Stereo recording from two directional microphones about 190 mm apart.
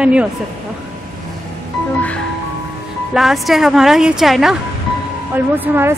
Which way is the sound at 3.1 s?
Centre (ahead or behind).